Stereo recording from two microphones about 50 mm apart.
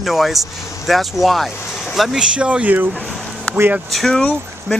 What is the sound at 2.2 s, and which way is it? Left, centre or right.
Speech, right.